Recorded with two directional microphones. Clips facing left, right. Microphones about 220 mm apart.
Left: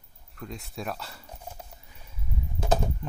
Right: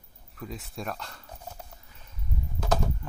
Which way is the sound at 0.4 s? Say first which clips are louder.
Even; centre (ahead or behind).